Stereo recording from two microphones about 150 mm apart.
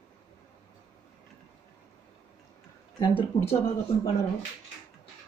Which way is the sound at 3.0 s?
35° left (ahead or behind).